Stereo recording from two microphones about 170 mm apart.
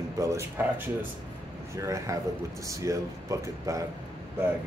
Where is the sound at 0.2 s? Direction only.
15° right (ahead or behind).